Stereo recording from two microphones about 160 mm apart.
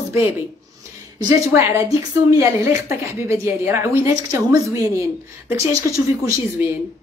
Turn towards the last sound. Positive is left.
turn(degrees=-20)  # may be behind; listen again after turning